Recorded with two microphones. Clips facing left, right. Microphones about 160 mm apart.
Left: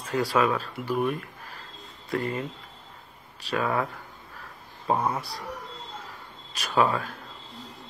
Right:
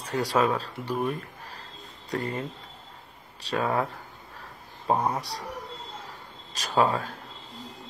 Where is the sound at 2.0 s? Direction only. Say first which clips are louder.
Left 2 dB; 40° right (ahead or behind).